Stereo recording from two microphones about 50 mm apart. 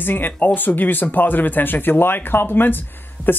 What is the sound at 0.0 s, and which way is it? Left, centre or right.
Speech, left.